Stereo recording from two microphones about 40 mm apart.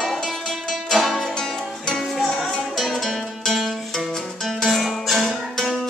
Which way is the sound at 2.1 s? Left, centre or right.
Centre.